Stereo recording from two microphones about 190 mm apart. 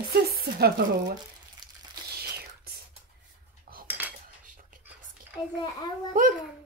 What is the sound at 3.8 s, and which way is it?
Cutlery, 10° right (ahead or behind).